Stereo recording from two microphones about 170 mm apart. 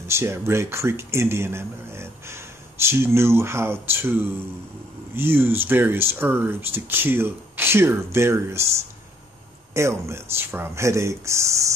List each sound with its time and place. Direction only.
0.0 s speech: 15° right (ahead or behind)